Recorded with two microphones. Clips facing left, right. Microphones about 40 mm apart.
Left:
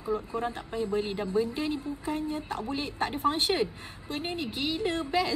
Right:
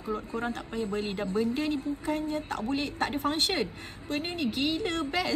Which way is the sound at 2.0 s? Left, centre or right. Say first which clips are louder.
Left 1 dB; right.